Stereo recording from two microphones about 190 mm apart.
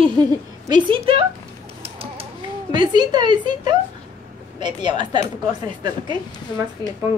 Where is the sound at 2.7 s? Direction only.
25° right (ahead or behind).